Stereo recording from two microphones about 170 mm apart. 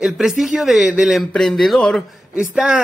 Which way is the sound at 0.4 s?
Centre (ahead or behind).